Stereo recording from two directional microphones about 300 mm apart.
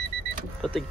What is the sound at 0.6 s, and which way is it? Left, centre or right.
Speech, centre.